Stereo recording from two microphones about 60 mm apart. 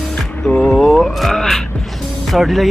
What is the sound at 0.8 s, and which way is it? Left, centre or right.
Speech, centre.